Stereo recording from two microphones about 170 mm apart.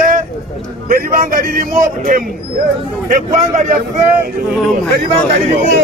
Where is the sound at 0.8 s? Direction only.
55° right (ahead or behind).